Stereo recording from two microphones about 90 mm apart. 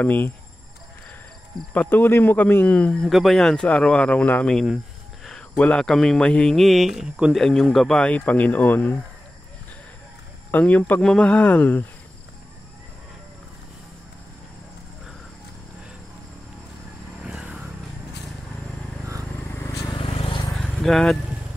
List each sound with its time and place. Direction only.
0.0 s speech: 20° left (ahead or behind)
1.7 s speech: 20° left (ahead or behind)
3.1 s speech: centre (ahead or behind)
6.5 s speech: centre (ahead or behind)
7.3 s speech: 5° left (ahead or behind); by 8.9 s 20° left (ahead or behind)
10.5 s speech: 15° left (ahead or behind)
17.2 s vehicle: 10° right (ahead or behind)
19.5 s vehicle: 35° left (ahead or behind)
20.0 s vehicle: 80° left
20.5 s vehicle: 5° left (ahead or behind)